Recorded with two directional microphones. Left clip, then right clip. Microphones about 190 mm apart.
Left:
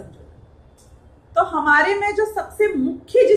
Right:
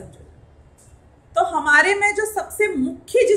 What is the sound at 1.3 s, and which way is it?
A woman's voice, 50° right (ahead or behind).